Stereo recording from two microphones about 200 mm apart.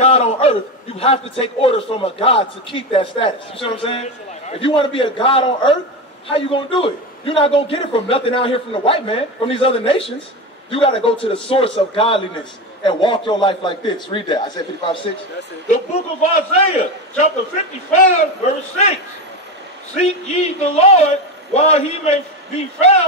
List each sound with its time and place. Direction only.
0.0 s a sound: 30° left (ahead or behind)
1.4 s a man's voice: 25° left (ahead or behind)
15.7 s a man's voice: 35° left (ahead or behind)
17.9 s a man's voice: 35° left (ahead or behind)
20.0 s a man's voice: 35° left (ahead or behind)